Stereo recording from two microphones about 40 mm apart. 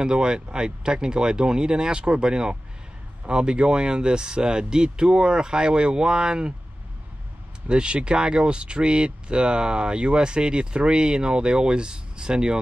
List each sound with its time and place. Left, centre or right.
0.0 s speech: right
7.6 s speech: right